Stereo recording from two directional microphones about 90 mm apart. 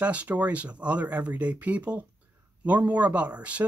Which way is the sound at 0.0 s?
15° right (ahead or behind).